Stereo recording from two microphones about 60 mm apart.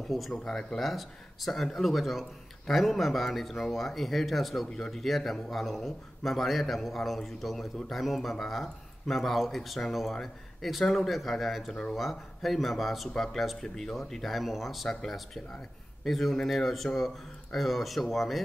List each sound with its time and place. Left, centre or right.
0.1 s speech: centre